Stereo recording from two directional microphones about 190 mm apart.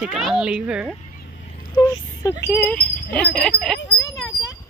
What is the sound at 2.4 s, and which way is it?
Speech, 10° left (ahead or behind).